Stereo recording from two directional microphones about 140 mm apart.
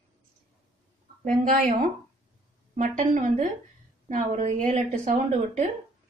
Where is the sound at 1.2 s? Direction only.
70° right (ahead or behind).